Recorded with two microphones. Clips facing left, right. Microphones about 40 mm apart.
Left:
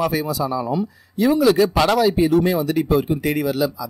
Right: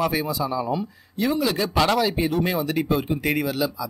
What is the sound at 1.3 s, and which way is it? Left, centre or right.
Speech, left.